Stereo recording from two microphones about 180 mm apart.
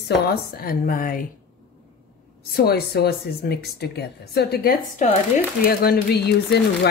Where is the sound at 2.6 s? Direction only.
60° left (ahead or behind).